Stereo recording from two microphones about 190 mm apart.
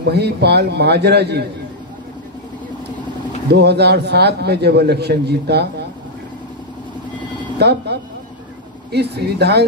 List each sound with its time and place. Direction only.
0.0 s a man's voice: 60° right (ahead or behind)
3.4 s a man's voice: 60° right (ahead or behind)
7.5 s a man's voice: 60° right (ahead or behind)